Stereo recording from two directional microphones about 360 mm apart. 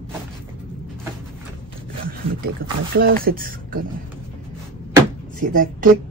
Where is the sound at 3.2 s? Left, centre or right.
Right.